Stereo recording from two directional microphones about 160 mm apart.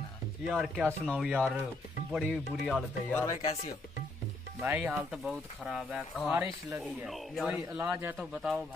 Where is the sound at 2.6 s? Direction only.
5° left (ahead or behind).